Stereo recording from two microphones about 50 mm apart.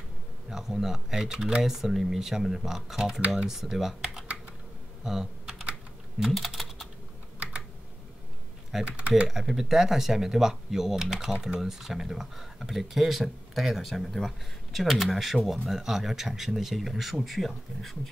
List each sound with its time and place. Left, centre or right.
0.5 s speech: centre
5.0 s typing: centre
8.7 s speech: centre